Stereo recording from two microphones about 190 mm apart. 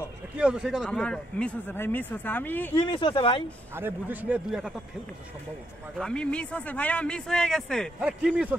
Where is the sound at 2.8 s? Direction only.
25° left (ahead or behind).